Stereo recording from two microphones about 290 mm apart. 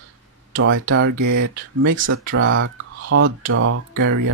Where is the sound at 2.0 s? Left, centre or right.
Right.